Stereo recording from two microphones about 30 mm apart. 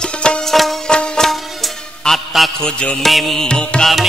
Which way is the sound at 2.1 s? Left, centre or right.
Left.